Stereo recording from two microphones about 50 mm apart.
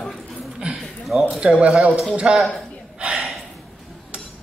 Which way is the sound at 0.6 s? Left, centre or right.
Right.